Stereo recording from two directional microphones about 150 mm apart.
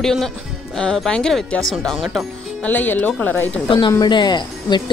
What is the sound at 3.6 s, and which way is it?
Speech, 30° left (ahead or behind).